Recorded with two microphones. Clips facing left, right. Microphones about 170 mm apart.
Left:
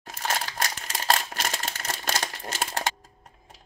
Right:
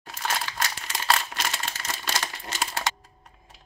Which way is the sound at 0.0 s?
40° left (ahead or behind).